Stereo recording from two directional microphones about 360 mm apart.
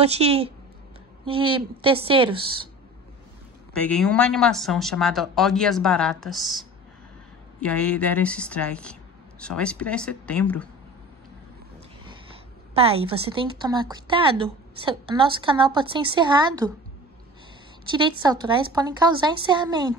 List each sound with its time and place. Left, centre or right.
0.0 s a woman's voice: centre
3.7 s speech: centre
7.6 s speech: centre
12.7 s a woman's voice: centre
17.9 s a woman's voice: centre